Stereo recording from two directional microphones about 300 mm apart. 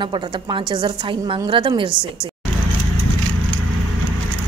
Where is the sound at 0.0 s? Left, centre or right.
Centre.